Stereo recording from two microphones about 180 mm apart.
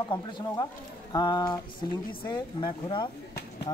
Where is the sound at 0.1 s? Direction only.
25° left (ahead or behind).